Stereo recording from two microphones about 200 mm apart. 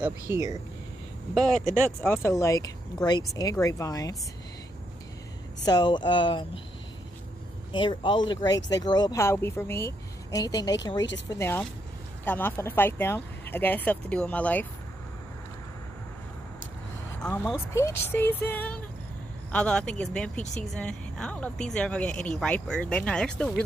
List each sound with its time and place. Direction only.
0.0 s speech: 15° right (ahead or behind)
1.3 s speech: centre (ahead or behind)
5.7 s speech: 20° left (ahead or behind)
7.7 s speech: 25° left (ahead or behind); by 14.7 s 5° left (ahead or behind)
17.2 s speech: 10° left (ahead or behind)